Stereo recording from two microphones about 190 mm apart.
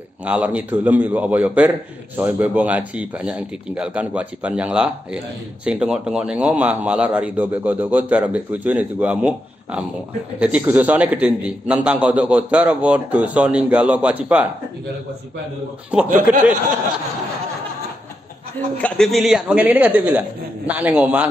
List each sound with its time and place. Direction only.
0.2 s speech: 5° right (ahead or behind)
15.9 s speech: 5° right (ahead or behind)
18.8 s speech: 5° left (ahead or behind)